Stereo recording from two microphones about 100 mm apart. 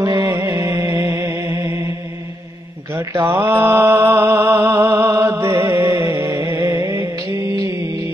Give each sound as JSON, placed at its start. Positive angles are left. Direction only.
{"t": 0.0, "sound": "music", "side_deg": -35}
{"t": 2.9, "sound": "mantra", "side_deg": -30}